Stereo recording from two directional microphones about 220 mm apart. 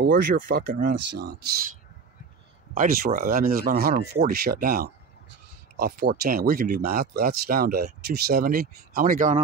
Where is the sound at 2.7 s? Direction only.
40° right (ahead or behind).